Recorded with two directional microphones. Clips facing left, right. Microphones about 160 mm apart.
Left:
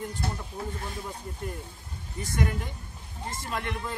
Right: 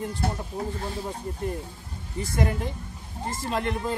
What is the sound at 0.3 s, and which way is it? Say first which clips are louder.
Speech: right 4 dB; 30° right (ahead or behind).